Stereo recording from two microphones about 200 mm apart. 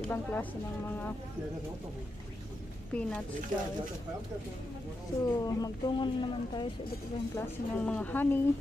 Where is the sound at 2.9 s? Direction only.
5° left (ahead or behind).